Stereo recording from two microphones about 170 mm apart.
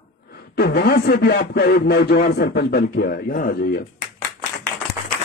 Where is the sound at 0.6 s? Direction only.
65° left (ahead or behind).